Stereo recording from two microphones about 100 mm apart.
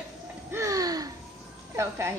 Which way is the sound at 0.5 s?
35° right (ahead or behind).